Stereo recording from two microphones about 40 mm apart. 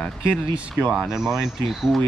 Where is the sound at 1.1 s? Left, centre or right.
Centre.